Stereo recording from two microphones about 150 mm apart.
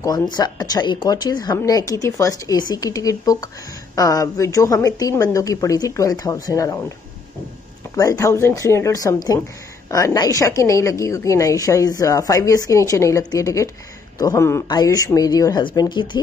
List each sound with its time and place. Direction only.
0.4 s a woman's voice: 25° left (ahead or behind)
7.9 s a woman's voice: 20° left (ahead or behind)